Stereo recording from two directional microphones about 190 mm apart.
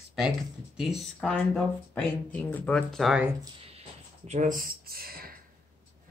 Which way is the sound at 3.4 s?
30° right (ahead or behind).